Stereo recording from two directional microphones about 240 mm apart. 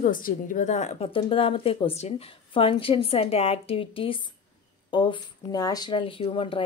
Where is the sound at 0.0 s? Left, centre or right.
Left.